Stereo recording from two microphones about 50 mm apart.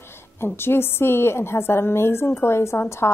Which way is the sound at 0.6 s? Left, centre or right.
Left.